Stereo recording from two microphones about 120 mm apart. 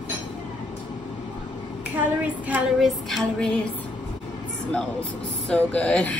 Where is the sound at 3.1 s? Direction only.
5° left (ahead or behind).